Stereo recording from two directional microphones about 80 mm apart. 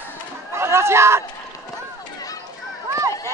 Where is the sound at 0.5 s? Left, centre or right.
Right.